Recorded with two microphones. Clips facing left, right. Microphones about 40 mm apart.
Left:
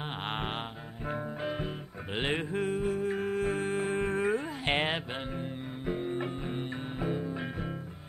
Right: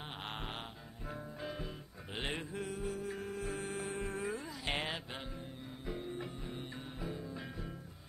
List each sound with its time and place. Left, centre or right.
0.2 s music: left